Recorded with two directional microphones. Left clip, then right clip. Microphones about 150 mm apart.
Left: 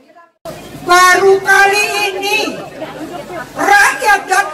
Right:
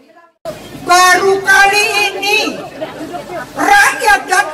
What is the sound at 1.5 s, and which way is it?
Music, 40° right (ahead or behind).